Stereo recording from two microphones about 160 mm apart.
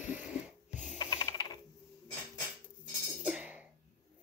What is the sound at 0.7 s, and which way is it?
Ratchet, 10° right (ahead or behind).